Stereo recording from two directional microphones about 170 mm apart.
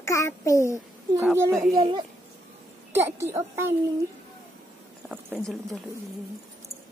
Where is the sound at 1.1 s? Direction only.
15° right (ahead or behind).